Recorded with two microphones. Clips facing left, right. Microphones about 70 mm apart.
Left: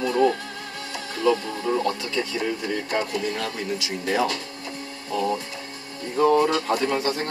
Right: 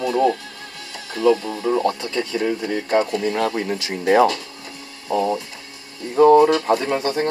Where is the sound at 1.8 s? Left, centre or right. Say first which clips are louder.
Right 4 dB; right.